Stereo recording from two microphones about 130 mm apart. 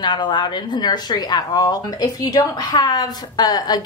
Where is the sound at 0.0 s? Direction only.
35° left (ahead or behind).